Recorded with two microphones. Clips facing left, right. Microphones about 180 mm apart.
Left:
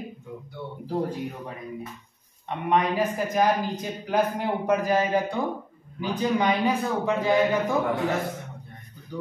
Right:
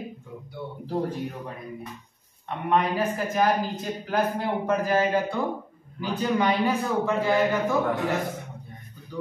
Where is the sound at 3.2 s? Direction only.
15° left (ahead or behind).